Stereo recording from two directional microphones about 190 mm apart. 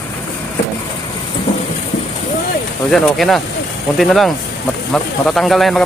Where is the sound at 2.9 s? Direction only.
Centre (ahead or behind).